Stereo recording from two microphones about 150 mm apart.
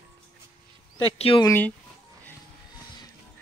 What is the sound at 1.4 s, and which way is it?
Speech, 15° left (ahead or behind).